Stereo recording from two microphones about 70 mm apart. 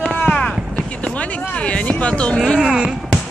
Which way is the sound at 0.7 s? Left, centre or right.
Centre.